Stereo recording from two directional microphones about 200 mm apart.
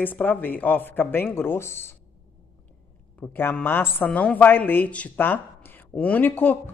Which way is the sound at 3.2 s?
10° left (ahead or behind).